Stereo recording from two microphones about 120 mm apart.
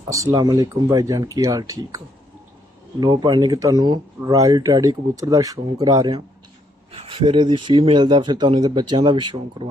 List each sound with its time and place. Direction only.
0.1 s speech: 30° right (ahead or behind)
3.0 s speech: 35° right (ahead or behind)
6.9 s speech: 50° right (ahead or behind)